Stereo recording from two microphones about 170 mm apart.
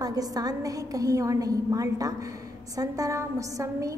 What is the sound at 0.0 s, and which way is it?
A woman's voice, 20° right (ahead or behind).